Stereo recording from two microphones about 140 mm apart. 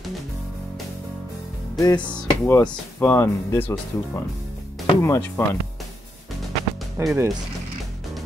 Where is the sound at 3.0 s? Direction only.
15° left (ahead or behind).